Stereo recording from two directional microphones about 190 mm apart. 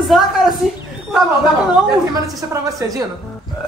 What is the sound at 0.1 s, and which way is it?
Speech, centre (ahead or behind).